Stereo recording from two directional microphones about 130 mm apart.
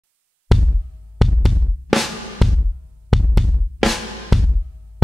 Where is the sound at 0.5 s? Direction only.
Centre (ahead or behind).